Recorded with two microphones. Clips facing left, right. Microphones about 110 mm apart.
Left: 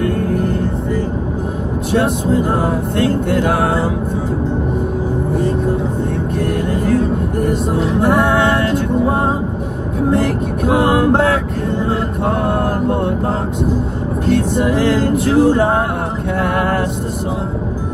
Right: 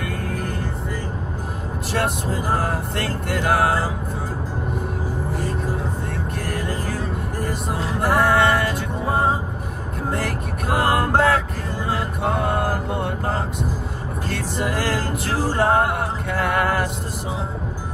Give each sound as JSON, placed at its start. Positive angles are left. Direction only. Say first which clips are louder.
{"t": 2.2, "sound": "music", "louder": "left 8 dB", "side_deg": 0}
{"t": 3.3, "sound": "music", "louder": "left 4 dB", "side_deg": 65}
{"t": 7.7, "sound": "music", "louder": "left 5 dB", "side_deg": 0}
{"t": 11.9, "sound": "music", "louder": "left 5 dB", "side_deg": 60}
{"t": 14.8, "sound": "music", "louder": "left 10 dB", "side_deg": 65}